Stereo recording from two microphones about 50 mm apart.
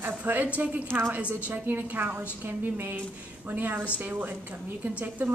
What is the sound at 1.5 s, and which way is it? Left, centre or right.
Speech, right.